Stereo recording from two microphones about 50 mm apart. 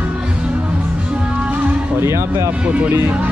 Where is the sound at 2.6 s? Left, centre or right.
Right.